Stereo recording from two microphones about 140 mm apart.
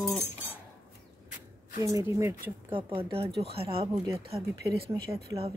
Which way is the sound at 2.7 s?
40° right (ahead or behind).